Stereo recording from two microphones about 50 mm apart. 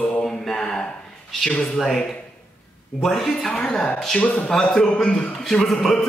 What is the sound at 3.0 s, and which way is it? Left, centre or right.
A woman's voice, centre.